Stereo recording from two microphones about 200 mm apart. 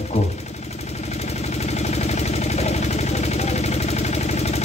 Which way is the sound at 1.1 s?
35° left (ahead or behind).